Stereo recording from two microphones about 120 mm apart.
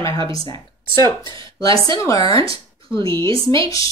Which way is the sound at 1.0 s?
40° right (ahead or behind).